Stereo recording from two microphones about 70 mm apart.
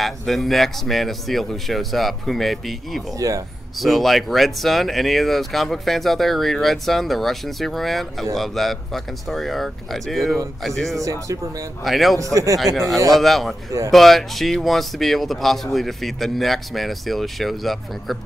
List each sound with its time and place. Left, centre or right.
0.0 s speech: centre
3.2 s speech: right
3.8 s speech: centre
11.0 s speech: right
11.8 s speech: centre
12.2 s speech: right
13.1 s speech: centre